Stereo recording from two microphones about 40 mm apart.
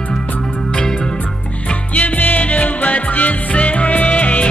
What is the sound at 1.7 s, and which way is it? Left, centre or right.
Music, left.